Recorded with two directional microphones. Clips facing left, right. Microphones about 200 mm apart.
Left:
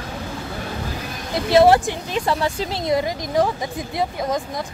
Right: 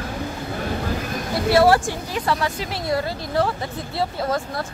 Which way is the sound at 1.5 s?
20° left (ahead or behind).